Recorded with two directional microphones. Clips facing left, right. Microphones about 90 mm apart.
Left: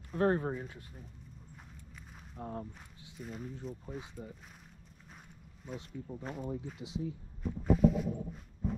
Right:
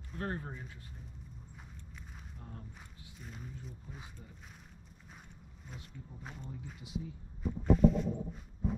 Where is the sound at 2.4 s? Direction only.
50° left (ahead or behind).